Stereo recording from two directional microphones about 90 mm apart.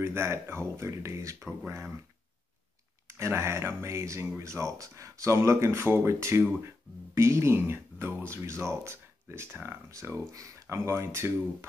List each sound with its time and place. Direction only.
0.0 s speech: 30° right (ahead or behind)
3.1 s speech: 30° right (ahead or behind)